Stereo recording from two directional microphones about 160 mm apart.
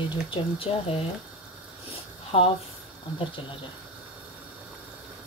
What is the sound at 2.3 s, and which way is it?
Speech, 35° left (ahead or behind).